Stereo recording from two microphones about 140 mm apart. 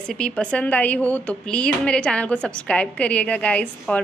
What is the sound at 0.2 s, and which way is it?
A woman's voice, 10° left (ahead or behind).